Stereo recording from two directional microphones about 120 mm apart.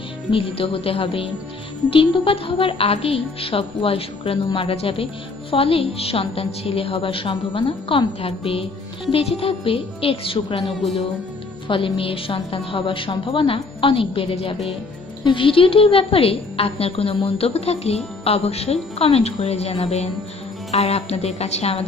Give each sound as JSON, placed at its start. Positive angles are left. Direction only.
{"t": 0.3, "sound": "speech", "side_deg": 50}
{"t": 10.6, "sound": "music", "side_deg": 0}
{"t": 11.6, "sound": "a woman's voice", "side_deg": 45}